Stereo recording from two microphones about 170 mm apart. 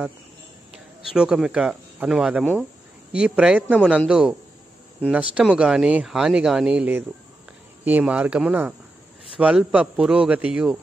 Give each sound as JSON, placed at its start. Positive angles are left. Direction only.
{"t": 1.0, "sound": "speech", "side_deg": -5}